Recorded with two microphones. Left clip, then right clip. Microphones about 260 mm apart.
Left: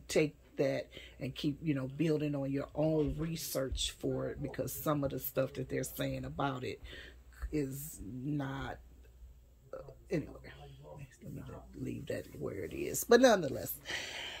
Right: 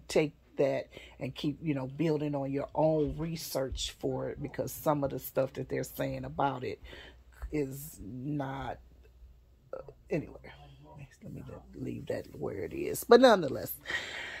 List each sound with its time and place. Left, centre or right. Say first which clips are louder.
0.1 s speech: right 3 dB; centre
10.0 s speech: right 2 dB; centre